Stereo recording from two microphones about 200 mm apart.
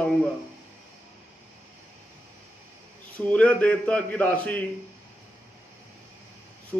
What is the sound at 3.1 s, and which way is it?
A man's voice, 5° left (ahead or behind).